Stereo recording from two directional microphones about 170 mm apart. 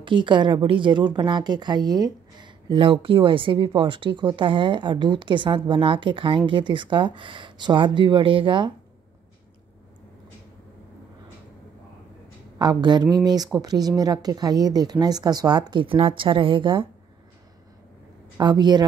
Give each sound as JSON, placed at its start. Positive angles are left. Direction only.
{"t": 0.0, "sound": "a woman's voice", "side_deg": -30}
{"t": 12.5, "sound": "a woman's voice", "side_deg": -25}
{"t": 18.4, "sound": "a woman's voice", "side_deg": -25}